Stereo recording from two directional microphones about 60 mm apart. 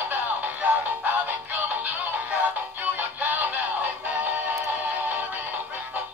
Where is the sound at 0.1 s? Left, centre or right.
Right.